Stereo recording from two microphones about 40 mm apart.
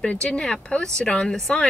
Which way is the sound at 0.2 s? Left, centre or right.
Centre.